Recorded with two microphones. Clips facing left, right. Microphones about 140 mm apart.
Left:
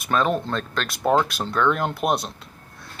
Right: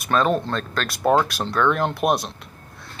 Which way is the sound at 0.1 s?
5° left (ahead or behind).